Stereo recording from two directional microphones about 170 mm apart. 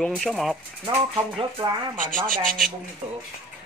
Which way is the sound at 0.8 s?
25° right (ahead or behind).